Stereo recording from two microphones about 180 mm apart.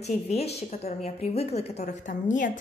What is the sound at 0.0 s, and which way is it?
A woman's voice, 35° left (ahead or behind).